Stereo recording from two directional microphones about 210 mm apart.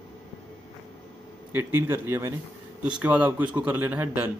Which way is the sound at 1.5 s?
10° right (ahead or behind).